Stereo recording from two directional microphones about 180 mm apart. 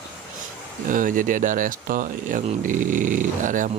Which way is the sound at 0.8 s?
45° right (ahead or behind).